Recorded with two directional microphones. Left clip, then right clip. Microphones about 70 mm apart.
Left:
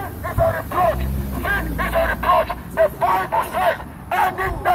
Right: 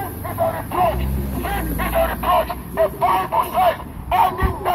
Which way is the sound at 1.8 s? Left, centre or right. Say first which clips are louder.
Right 3 dB; left.